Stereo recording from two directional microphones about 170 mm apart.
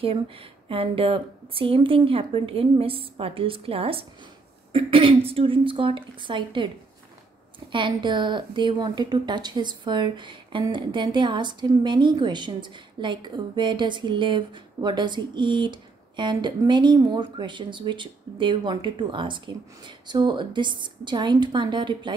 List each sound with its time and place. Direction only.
0.0 s speech: 35° right (ahead or behind)
7.7 s a woman's voice: 30° right (ahead or behind)